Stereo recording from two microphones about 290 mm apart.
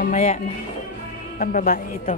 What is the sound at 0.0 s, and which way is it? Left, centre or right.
Speech, left.